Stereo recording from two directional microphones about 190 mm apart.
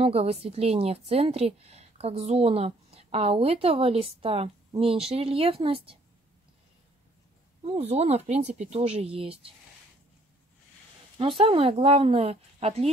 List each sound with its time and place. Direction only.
0.0 s a woman's voice: 30° right (ahead or behind)
7.6 s a woman's voice: 35° right (ahead or behind)
11.1 s a woman's voice: 30° right (ahead or behind)